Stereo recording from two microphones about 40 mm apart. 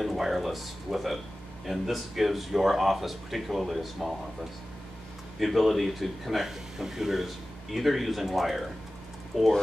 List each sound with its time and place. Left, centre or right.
0.0 s speech: centre
5.4 s speech: centre